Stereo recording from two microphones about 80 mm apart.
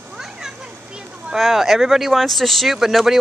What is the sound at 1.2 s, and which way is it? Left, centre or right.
Speech, centre.